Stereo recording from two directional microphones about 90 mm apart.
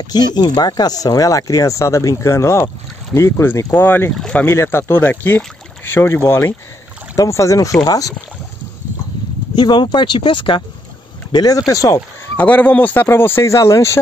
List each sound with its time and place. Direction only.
0.0 s speech: 50° left (ahead or behind); by 4.5 s 10° left (ahead or behind)
4.5 s speech: 25° left (ahead or behind); by 8.1 s 45° left (ahead or behind)
9.6 s speech: 55° left (ahead or behind)
11.3 s speech: 45° left (ahead or behind)
12.4 s speech: 15° left (ahead or behind); by 13.8 s 35° left (ahead or behind)